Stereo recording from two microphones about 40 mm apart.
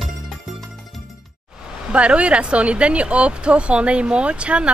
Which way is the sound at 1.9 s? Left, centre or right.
Right.